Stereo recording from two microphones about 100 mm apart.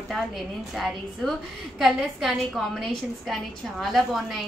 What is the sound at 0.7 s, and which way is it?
A woman's voice, centre (ahead or behind).